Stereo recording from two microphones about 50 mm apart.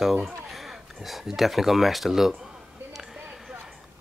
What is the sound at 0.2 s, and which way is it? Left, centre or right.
Speech, centre.